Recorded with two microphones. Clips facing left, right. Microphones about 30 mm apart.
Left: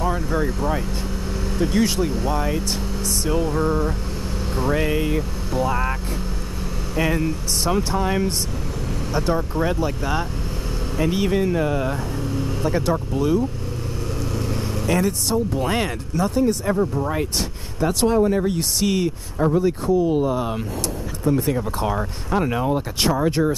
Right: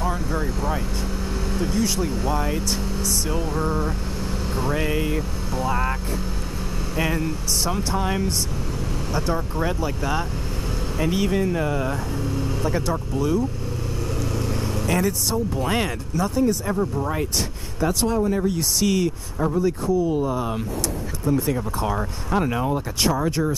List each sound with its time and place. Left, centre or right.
0.0 s speech: centre
1.7 s speech: left
2.0 s speech: centre
7.0 s speech: centre
7.6 s speech: centre
9.1 s speech: centre
14.3 s vehicle: centre
15.0 s speech: centre
18.0 s speech: left
21.4 s speech: centre
22.7 s speech: left